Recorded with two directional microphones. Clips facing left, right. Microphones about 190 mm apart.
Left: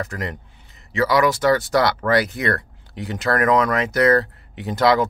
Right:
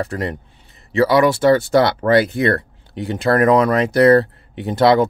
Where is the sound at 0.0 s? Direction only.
30° right (ahead or behind).